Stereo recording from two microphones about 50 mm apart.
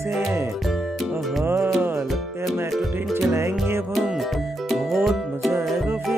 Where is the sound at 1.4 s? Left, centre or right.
Right.